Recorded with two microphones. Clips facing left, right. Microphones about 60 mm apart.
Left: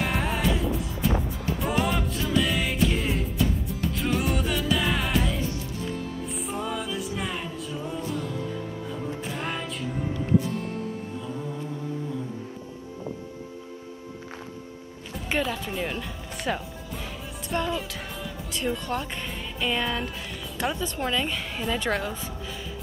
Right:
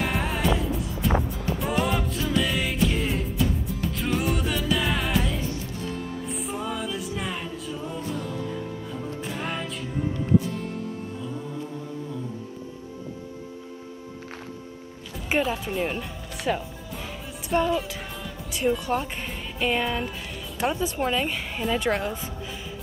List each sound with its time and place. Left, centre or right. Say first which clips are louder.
0.0 s music: even; centre
6.4 s music: even; centre
9.3 s music: right 2 dB; centre
15.2 s speech: right 3 dB; centre
16.0 s music: right 1 dB; centre
17.5 s speech: right 5 dB; centre
18.6 s speech: right 5 dB; centre
19.6 s speech: right 2 dB; centre
21.1 s a woman's voice: right 1 dB; centre
21.4 s speech: right 2 dB; centre